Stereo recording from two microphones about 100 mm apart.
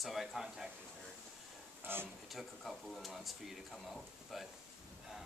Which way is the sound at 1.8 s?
20° right (ahead or behind).